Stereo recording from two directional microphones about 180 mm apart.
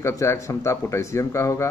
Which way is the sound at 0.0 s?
15° left (ahead or behind).